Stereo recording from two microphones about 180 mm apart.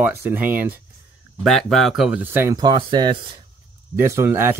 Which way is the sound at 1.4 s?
5° left (ahead or behind).